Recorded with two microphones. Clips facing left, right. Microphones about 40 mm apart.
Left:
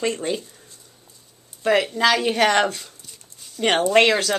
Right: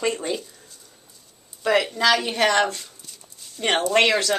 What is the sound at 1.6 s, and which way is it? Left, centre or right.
Speech, left.